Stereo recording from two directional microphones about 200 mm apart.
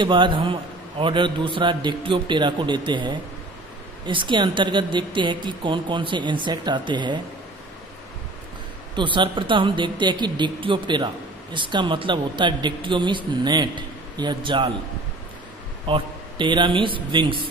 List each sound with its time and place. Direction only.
0.0 s a man's voice: 25° right (ahead or behind)
8.9 s a man's voice: 25° right (ahead or behind)
15.9 s a man's voice: 25° right (ahead or behind)